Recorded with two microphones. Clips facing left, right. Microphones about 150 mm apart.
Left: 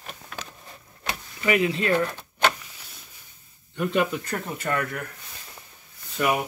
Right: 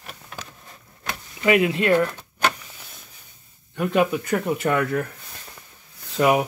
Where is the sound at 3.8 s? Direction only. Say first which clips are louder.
Right 3 dB; 55° right (ahead or behind).